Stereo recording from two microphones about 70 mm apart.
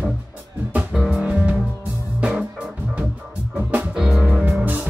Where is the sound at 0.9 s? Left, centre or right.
Centre.